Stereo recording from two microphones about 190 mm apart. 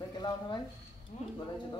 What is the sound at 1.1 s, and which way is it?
Speech, 35° left (ahead or behind).